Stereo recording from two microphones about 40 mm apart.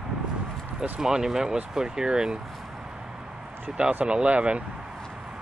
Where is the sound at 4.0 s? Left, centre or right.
Right.